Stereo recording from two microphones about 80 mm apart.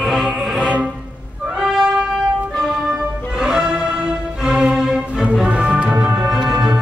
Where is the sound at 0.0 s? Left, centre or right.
Centre.